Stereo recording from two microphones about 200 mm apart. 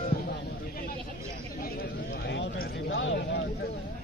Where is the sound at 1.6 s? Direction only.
55° left (ahead or behind).